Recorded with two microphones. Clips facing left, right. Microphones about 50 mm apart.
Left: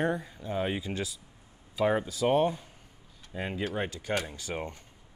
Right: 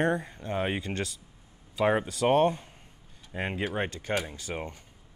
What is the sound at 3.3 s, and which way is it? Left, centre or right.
Speech, right.